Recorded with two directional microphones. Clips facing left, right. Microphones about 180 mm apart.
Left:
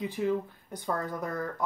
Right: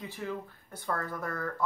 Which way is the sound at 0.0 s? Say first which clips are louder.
Left 8 dB; 15° left (ahead or behind).